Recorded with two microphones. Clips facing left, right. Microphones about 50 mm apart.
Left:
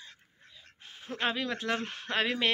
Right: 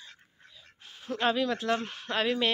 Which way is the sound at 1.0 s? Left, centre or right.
Left.